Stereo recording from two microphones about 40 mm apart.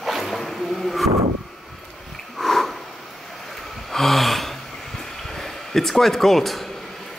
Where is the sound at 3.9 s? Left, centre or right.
Centre.